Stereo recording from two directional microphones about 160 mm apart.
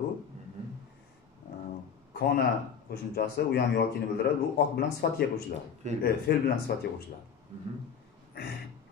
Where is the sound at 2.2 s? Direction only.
75° left (ahead or behind).